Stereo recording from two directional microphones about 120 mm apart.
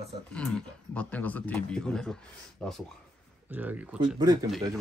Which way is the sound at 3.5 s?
15° right (ahead or behind).